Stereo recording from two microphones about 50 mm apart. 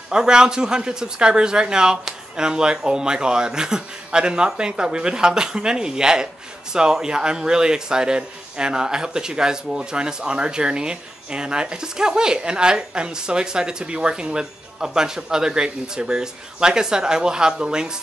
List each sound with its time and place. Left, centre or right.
0.1 s a man's voice: centre